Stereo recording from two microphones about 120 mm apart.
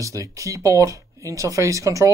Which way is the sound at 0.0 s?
25° right (ahead or behind).